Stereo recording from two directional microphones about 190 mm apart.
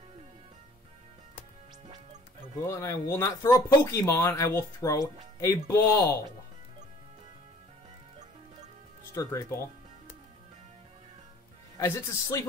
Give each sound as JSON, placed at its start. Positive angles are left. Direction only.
{"t": 2.6, "sound": "speech", "side_deg": 15}
{"t": 9.1, "sound": "speech", "side_deg": 15}
{"t": 11.8, "sound": "speech", "side_deg": 15}